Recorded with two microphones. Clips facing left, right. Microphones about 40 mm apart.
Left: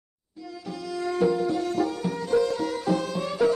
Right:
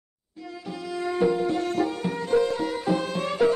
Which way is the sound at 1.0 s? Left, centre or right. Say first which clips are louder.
Even; right.